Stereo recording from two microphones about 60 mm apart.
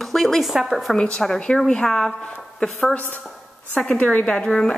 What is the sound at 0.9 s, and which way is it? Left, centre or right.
A woman's voice, centre.